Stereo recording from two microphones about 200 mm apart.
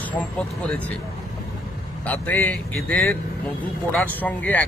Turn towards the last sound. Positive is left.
turn(degrees=10)  # may be behind; listen again after turning